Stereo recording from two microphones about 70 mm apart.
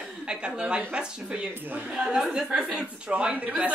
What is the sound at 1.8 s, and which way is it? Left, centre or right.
A woman's voice, centre.